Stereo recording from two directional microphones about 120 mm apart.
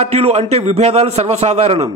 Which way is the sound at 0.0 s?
55° right (ahead or behind).